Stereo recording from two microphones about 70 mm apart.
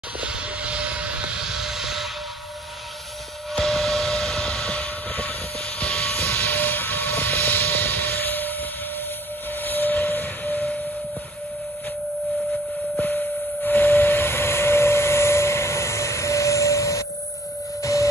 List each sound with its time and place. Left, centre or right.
0.2 s vehicle: centre
3.5 s vehicle: centre; by 8.5 s left
9.7 s a sound: left
13.0 s steam whistle: left